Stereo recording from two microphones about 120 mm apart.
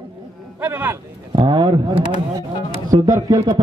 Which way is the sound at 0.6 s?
15° right (ahead or behind).